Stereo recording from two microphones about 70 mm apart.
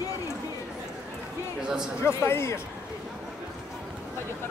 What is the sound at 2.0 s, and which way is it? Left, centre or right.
Speech, left.